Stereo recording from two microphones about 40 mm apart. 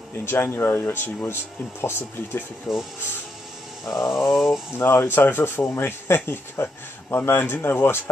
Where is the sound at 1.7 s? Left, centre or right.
Left.